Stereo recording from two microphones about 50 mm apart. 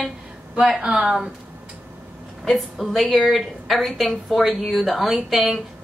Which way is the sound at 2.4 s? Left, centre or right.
Centre.